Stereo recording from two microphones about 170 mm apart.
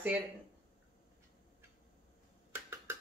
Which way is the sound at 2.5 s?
15° right (ahead or behind).